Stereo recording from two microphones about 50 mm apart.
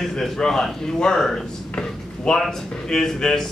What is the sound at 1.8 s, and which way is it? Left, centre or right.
Drawer open or close, centre.